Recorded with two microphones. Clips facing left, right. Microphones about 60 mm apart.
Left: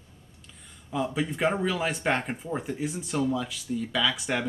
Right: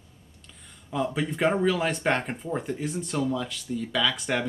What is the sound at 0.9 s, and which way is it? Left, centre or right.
Speech, centre.